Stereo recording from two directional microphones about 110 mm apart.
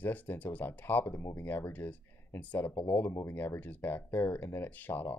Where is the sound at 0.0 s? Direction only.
15° left (ahead or behind).